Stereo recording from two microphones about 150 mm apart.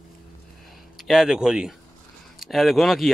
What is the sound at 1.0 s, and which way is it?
Speech, centre (ahead or behind).